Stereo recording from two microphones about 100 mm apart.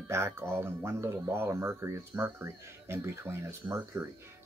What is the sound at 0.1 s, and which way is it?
Speech, 25° right (ahead or behind).